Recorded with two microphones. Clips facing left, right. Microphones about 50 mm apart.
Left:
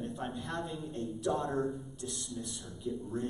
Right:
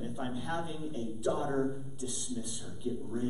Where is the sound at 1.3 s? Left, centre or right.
Right.